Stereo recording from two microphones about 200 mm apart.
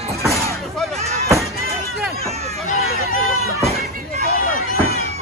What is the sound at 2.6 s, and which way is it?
Hubbub, 40° left (ahead or behind).